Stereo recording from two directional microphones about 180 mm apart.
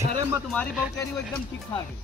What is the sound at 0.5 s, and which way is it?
Speech, 5° left (ahead or behind).